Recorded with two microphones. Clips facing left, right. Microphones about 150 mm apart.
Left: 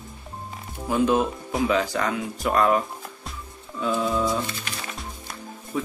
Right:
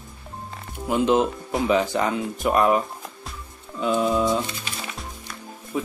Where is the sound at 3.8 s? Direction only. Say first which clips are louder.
Right 3 dB; 20° right (ahead or behind).